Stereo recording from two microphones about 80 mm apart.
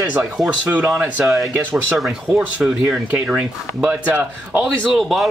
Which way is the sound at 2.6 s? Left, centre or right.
Centre.